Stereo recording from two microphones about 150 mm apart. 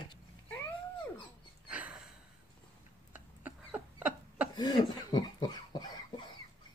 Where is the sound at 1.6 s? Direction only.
10° right (ahead or behind).